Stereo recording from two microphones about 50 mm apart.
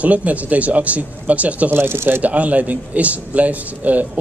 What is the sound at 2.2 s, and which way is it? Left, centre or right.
A man's voice, right.